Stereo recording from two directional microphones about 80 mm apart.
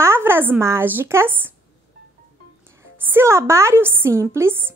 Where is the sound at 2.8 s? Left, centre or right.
Right.